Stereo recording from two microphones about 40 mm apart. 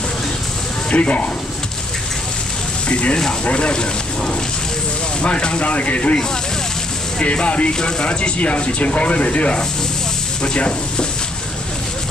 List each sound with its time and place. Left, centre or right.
0.8 s speech: left
2.9 s speech: left
5.2 s speech: left
7.2 s speech: left